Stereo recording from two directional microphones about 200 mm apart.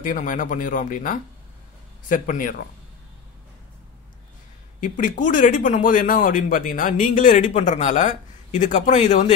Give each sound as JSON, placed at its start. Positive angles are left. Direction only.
{"t": 0.0, "sound": "speech", "side_deg": 40}
{"t": 4.7, "sound": "speech", "side_deg": 40}